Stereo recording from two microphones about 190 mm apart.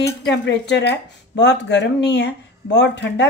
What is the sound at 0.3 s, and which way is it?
Speech, 65° left (ahead or behind).